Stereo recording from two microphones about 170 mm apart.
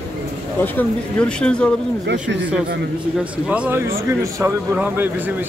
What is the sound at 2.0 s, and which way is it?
Speech, 90° right.